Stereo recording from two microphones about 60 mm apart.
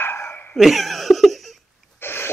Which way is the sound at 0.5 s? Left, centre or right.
Centre.